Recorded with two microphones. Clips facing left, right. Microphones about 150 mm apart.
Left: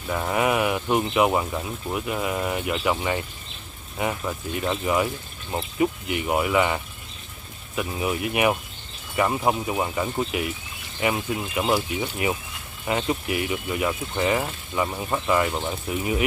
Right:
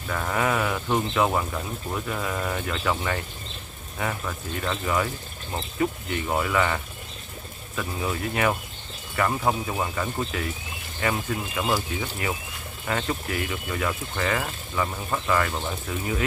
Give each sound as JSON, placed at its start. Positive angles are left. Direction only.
{"t": 0.1, "sound": "speech", "side_deg": 15}